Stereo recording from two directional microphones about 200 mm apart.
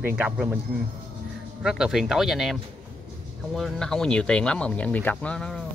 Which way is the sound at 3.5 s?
Centre (ahead or behind).